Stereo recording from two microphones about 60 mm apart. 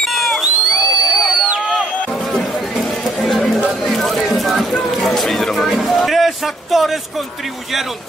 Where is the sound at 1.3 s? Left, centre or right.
Centre.